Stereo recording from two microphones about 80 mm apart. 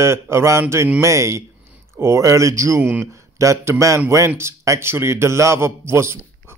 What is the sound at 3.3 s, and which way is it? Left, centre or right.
Speech, right.